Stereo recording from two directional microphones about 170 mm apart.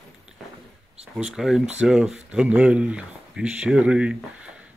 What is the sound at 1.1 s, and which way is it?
Speech, 5° right (ahead or behind).